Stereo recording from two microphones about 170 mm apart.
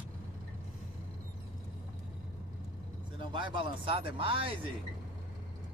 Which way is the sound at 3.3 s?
30° right (ahead or behind).